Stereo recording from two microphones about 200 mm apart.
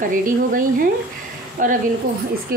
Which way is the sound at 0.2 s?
45° right (ahead or behind).